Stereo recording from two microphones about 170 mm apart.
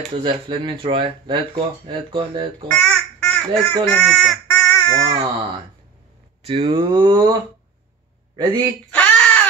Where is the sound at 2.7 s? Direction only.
5° left (ahead or behind).